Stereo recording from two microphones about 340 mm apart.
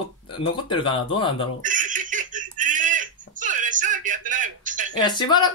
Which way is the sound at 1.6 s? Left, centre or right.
Right.